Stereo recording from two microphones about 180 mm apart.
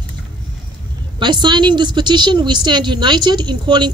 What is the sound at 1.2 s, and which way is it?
A woman's voice, 25° right (ahead or behind).